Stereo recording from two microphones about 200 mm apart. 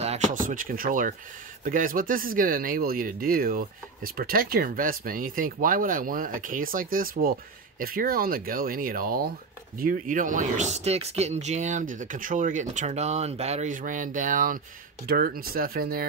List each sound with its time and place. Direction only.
0.0 s speech: 35° right (ahead or behind)